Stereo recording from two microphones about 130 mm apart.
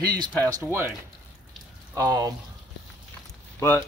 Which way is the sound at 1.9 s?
25° right (ahead or behind).